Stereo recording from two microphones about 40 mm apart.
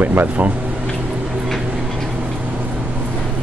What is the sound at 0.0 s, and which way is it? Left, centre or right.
Speech, right.